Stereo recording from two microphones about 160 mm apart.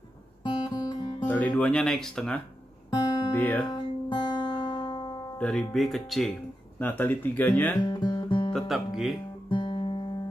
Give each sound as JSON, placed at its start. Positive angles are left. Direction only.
{"t": 0.4, "sound": "music", "side_deg": 30}
{"t": 1.2, "sound": "speech", "side_deg": 10}
{"t": 3.6, "sound": "music", "side_deg": 30}
{"t": 5.4, "sound": "speech", "side_deg": 5}
{"t": 6.8, "sound": "speech", "side_deg": 10}
{"t": 7.8, "sound": "music", "side_deg": 30}
{"t": 8.5, "sound": "speech", "side_deg": 0}
{"t": 9.5, "sound": "guitar", "side_deg": 30}